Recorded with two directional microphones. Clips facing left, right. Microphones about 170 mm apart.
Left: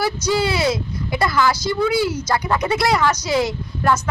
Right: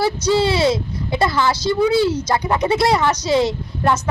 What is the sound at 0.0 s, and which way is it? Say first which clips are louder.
Speech: right 3 dB; 25° right (ahead or behind).